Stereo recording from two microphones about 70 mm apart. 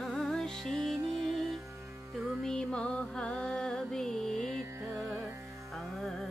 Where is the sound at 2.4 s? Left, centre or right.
Centre.